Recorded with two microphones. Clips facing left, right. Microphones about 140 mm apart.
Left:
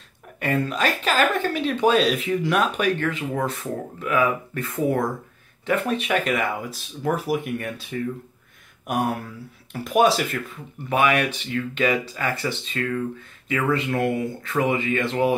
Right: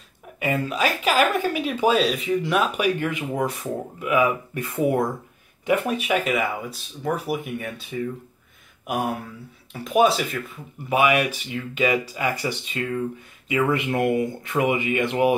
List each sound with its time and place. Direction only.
0.4 s speech: 10° right (ahead or behind)